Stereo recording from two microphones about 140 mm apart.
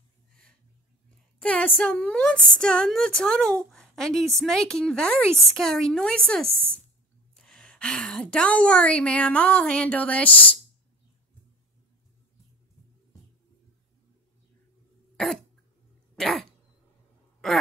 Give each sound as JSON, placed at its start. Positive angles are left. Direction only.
{"t": 1.4, "sound": "a woman's voice", "side_deg": 10}
{"t": 15.1, "sound": "cough", "side_deg": 0}
{"t": 16.2, "sound": "dog", "side_deg": 0}
{"t": 17.4, "sound": "a sound", "side_deg": 5}